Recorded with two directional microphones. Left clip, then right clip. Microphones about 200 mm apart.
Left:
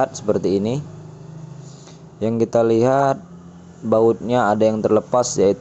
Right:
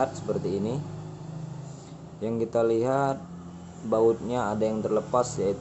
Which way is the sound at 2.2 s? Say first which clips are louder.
Left 8 dB; 35° left (ahead or behind).